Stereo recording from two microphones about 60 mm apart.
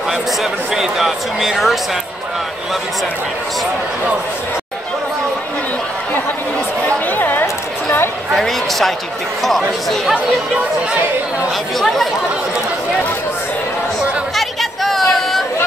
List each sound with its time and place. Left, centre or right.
0.4 s speech: centre
7.1 s a sound: left
8.3 s a sound: centre
9.4 s speech: centre
11.8 s speech: centre
14.3 s chatter: centre